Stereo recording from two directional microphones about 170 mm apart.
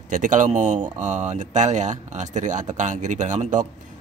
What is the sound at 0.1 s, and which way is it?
Speech, 50° right (ahead or behind).